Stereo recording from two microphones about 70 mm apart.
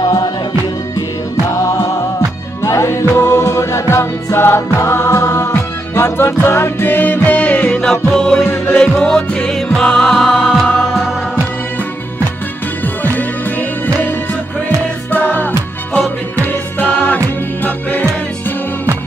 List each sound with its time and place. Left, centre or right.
1.6 s music: left; by 7.8 s centre
8.1 s music: centre
12.8 s music: left